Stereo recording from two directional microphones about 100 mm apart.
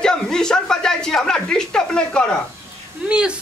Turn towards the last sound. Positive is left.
turn(degrees=-10)  # may be behind; listen again after turning